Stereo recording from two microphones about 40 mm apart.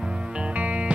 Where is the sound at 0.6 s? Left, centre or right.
Right.